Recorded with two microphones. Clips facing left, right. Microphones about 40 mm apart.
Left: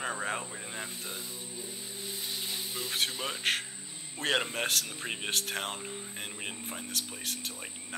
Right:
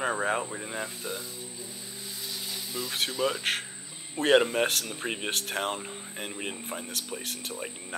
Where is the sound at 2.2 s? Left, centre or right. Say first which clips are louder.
Right 1 dB; left.